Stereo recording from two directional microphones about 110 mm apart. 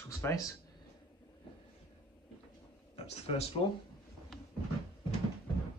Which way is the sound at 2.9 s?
70° left (ahead or behind).